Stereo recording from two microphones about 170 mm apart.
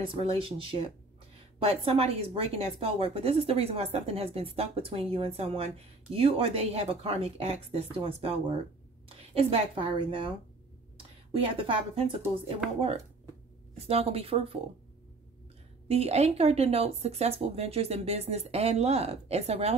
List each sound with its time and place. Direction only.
0.0 s speech: 35° right (ahead or behind)
11.5 s speech: 30° right (ahead or behind)
12.6 s speech: 5° right (ahead or behind)
13.8 s speech: 35° right (ahead or behind)
15.9 s speech: 35° right (ahead or behind)